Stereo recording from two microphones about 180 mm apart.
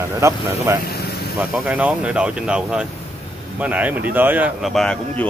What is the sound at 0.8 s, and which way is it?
Vehicle, 60° left (ahead or behind).